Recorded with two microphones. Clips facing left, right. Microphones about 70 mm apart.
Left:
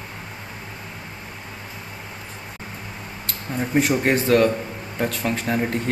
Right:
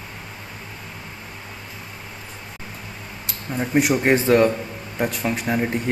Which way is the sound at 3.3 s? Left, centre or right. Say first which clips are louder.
Right 1 dB; centre.